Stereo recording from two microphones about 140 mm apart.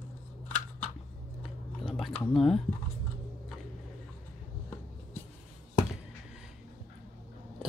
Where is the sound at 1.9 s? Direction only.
5° left (ahead or behind).